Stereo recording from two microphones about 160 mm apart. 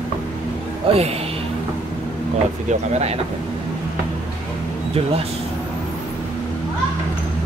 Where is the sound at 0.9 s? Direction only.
35° right (ahead or behind).